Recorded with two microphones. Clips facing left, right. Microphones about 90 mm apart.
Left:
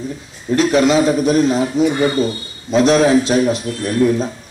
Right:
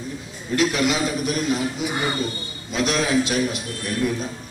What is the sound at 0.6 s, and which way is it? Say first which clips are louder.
A man's voice: left 8 dB; 35° left (ahead or behind).